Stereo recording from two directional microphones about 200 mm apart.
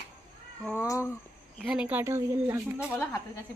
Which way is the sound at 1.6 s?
5° right (ahead or behind).